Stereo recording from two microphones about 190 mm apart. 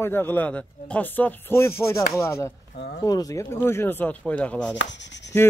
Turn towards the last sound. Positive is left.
turn(degrees=65)  # may be behind; listen again after turning